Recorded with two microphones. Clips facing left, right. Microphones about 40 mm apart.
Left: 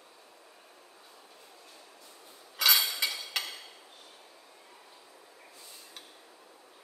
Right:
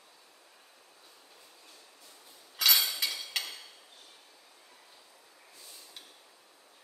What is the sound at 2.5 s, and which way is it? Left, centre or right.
Cutlery, centre.